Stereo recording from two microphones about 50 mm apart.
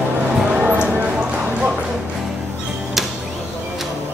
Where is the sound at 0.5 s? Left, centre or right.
Right.